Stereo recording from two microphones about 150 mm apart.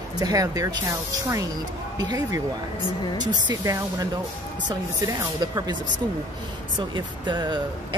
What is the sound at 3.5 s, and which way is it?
Speech, 25° right (ahead or behind).